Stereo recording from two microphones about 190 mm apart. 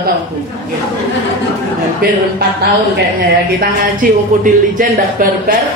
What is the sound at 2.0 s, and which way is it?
Speech, 50° right (ahead or behind).